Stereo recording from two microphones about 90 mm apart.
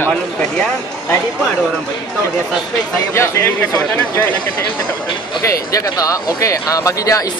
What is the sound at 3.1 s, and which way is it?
Speech, 30° left (ahead or behind).